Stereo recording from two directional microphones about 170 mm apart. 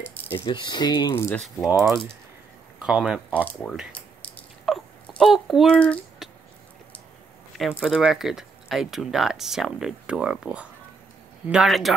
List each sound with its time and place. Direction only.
0.5 s speech: 25° left (ahead or behind)
1.1 s speech: 15° left (ahead or behind)
1.7 s speech: 5° right (ahead or behind)
3.9 s a sound: 10° left (ahead or behind)
7.8 s speech: centre (ahead or behind)